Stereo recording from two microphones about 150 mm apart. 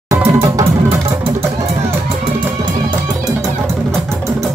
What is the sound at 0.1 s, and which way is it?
Music, 20° right (ahead or behind).